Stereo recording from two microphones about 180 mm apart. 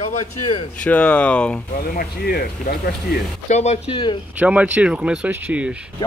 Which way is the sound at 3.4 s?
40° left (ahead or behind).